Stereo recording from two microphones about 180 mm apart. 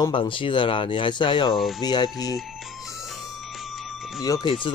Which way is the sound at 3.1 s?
Centre (ahead or behind).